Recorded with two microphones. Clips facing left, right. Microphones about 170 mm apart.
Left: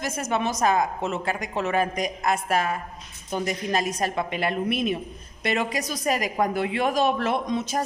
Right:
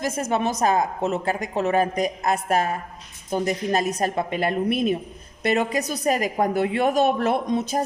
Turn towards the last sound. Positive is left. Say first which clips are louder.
# right 3 dB
turn(degrees=-45)  # may be behind; listen again after turning